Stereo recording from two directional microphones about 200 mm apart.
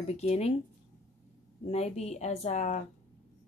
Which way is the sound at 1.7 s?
30° left (ahead or behind).